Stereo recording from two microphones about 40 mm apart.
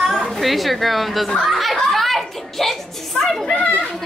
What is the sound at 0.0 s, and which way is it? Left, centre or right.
A woman's voice, centre.